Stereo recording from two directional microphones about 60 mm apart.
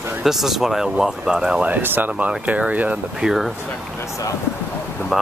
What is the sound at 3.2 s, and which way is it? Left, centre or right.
Speech, centre.